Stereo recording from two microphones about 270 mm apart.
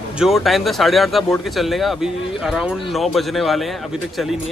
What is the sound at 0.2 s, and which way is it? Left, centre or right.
A man's voice, centre.